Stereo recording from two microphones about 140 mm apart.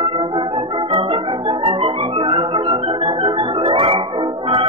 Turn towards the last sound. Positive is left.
turn(degrees=-40)  # may be behind; listen again after turning